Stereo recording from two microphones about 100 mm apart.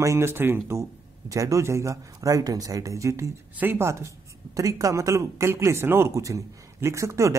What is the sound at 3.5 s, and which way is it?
Speech, 20° right (ahead or behind).